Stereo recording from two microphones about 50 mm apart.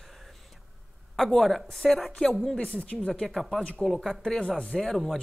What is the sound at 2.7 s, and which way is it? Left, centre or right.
Speech, left.